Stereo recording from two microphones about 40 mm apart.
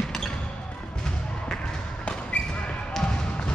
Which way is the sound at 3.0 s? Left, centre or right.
Centre.